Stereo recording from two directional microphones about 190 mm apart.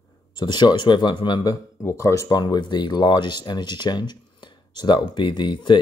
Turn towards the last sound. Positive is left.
turn(degrees=25)  # may be behind; listen again after turning